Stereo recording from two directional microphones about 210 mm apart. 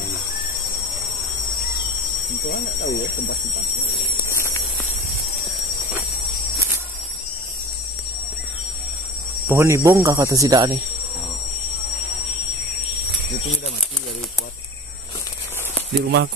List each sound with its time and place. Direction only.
2.5 s speech: 45° left (ahead or behind)
4.2 s a sound: 15° left (ahead or behind)
9.5 s speech: 10° right (ahead or behind)
16.0 s speech: 55° right (ahead or behind)